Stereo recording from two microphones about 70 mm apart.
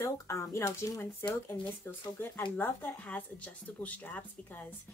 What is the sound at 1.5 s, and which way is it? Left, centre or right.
Speech, left.